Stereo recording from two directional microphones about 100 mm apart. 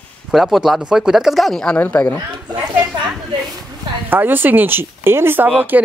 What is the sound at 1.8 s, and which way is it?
Speech, 20° left (ahead or behind).